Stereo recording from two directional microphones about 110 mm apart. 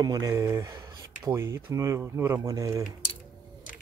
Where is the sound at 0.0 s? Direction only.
35° right (ahead or behind).